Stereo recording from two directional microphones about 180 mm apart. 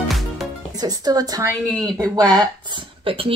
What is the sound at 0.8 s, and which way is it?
Speech, 20° right (ahead or behind).